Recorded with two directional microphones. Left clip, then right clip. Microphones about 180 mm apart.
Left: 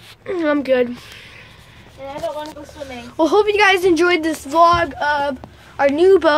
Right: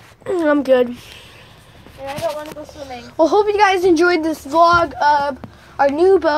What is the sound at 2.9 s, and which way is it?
Speech, 5° left (ahead or behind).